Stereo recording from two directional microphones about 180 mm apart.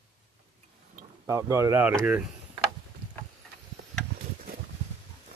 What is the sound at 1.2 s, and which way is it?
Speech, 15° right (ahead or behind).